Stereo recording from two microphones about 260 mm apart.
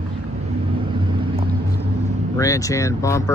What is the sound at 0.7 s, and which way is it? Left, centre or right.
Vehicle, centre.